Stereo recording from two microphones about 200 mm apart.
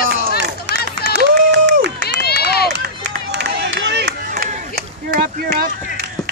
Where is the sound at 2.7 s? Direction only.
55° right (ahead or behind).